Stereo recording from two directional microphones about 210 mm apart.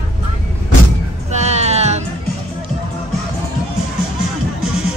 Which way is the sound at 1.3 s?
30° right (ahead or behind).